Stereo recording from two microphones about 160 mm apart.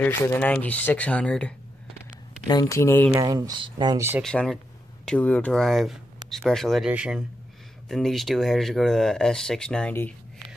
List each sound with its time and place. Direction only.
0.0 s speech: 10° left (ahead or behind)
2.4 s speech: 25° left (ahead or behind)
3.1 s speech: 20° right (ahead or behind)
4.2 s speech: 5° left (ahead or behind)